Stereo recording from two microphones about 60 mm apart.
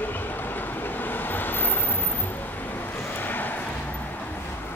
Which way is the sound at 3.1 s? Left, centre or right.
Left.